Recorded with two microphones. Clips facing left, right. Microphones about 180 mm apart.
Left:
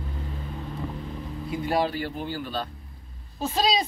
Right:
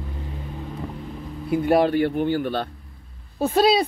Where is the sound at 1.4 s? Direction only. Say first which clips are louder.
Right 7 dB; 60° right (ahead or behind).